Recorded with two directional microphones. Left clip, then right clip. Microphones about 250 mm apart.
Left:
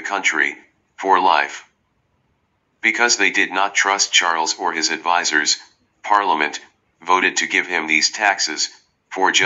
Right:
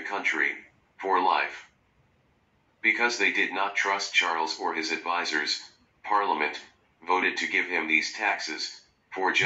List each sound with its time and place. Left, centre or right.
0.0 s speech: left
2.8 s speech: left